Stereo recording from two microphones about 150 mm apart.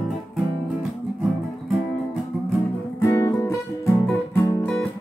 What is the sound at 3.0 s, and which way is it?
Music, 20° left (ahead or behind).